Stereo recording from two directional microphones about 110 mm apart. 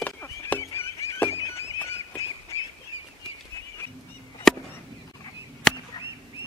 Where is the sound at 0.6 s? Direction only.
25° left (ahead or behind).